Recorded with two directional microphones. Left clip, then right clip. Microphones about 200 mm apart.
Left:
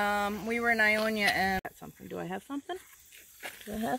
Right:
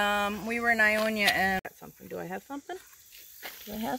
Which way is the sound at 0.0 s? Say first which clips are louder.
Right 2 dB; 10° right (ahead or behind).